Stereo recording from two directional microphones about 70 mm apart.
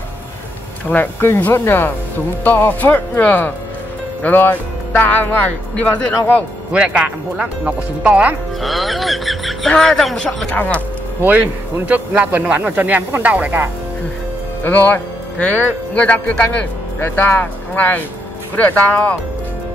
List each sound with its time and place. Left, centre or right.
0.8 s speech: left
6.7 s speech: centre
8.5 s a woman's voice: centre
10.5 s speech: left
11.2 s a man's voice: right
14.6 s a man's voice: left
17.0 s speech: left